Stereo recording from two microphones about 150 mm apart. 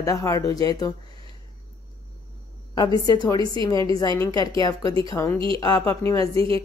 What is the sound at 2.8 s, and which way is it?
Speech, 25° left (ahead or behind).